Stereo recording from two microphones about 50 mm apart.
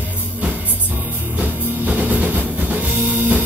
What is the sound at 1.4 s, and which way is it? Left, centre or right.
Drum kit, right.